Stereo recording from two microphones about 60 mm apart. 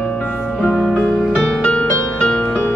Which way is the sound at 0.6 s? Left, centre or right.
Centre.